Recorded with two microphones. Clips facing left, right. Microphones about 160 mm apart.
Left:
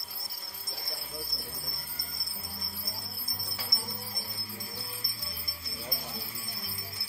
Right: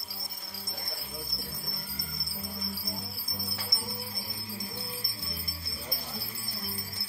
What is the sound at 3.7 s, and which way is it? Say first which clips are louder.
Music: right 1 dB; 20° left (ahead or behind).